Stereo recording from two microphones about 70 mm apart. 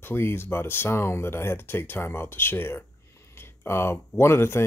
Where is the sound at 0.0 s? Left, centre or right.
Left.